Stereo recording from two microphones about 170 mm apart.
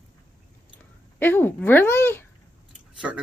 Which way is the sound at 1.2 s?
10° left (ahead or behind).